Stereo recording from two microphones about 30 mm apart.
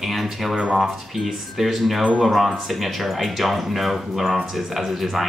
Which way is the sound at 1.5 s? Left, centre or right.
Centre.